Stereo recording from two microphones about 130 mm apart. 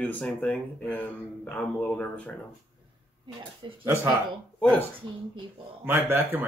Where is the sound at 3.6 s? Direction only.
30° right (ahead or behind).